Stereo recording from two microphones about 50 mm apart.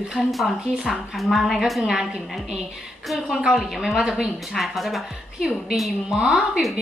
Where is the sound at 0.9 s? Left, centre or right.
Centre.